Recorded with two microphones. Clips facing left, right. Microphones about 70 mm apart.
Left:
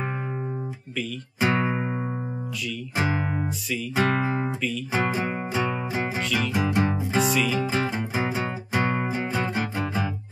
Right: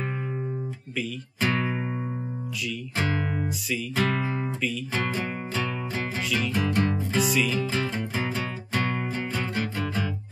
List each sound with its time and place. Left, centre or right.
1.4 s music: centre
3.9 s speech: left
4.9 s music: centre
7.2 s music: centre
7.5 s music: centre